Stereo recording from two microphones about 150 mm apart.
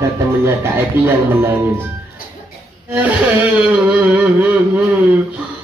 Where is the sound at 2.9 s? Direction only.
10° right (ahead or behind).